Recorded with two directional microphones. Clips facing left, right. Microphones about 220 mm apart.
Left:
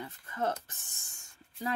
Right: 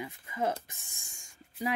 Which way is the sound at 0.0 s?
10° right (ahead or behind).